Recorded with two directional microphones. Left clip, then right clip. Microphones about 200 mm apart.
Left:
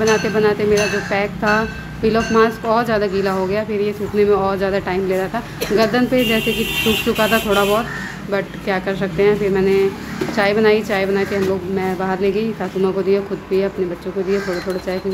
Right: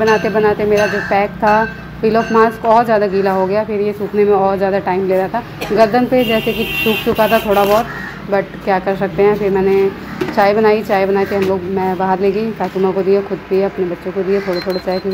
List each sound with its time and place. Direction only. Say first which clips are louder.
0.0 s speech: right 3 dB; centre (ahead or behind)